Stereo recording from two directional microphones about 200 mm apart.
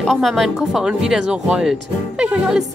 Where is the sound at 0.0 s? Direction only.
Centre (ahead or behind).